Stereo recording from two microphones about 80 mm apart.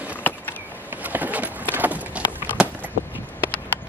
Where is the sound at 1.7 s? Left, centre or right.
Right.